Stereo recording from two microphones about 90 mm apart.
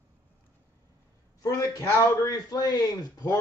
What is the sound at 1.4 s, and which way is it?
A man's voice, 45° left (ahead or behind).